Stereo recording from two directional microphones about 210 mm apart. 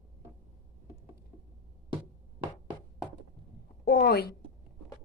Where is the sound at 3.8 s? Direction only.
45° left (ahead or behind).